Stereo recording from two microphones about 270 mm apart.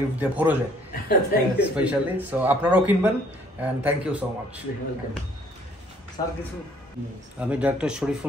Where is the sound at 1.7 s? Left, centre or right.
Centre.